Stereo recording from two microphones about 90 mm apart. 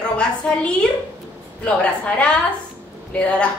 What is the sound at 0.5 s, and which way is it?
Speech, 10° left (ahead or behind).